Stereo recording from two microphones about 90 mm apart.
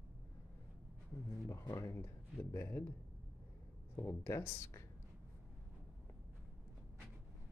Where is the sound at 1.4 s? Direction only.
30° left (ahead or behind).